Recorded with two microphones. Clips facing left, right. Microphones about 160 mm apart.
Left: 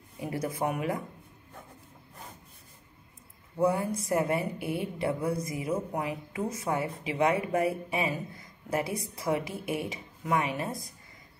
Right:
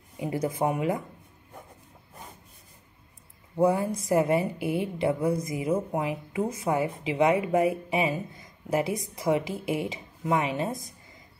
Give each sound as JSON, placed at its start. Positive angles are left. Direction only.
{"t": 0.2, "sound": "a woman's voice", "side_deg": -20}
{"t": 3.5, "sound": "a woman's voice", "side_deg": -25}